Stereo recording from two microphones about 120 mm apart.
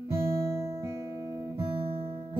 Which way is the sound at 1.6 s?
45° right (ahead or behind).